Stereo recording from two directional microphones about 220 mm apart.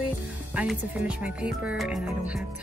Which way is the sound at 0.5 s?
5° right (ahead or behind).